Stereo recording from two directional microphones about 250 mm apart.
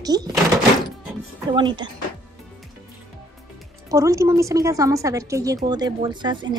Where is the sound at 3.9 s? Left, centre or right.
Centre.